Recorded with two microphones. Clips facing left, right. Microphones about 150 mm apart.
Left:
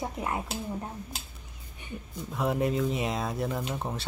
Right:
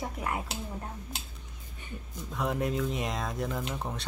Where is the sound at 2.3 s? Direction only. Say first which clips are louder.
Left 3 dB; centre (ahead or behind).